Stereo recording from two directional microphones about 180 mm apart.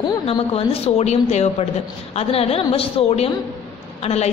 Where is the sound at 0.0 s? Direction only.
25° left (ahead or behind).